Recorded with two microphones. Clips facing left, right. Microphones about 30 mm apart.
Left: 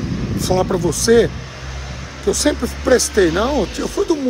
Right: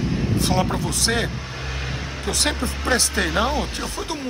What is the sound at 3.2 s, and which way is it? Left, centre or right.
Speech, centre.